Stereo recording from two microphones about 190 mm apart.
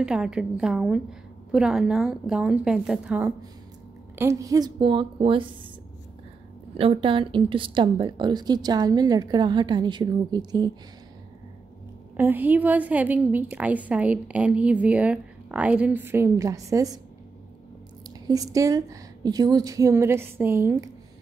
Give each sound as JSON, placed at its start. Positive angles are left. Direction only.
{"t": 0.0, "sound": "a woman's voice", "side_deg": -5}
{"t": 6.8, "sound": "a woman's voice", "side_deg": -30}
{"t": 12.2, "sound": "a woman's voice", "side_deg": -10}
{"t": 18.2, "sound": "a woman's voice", "side_deg": -20}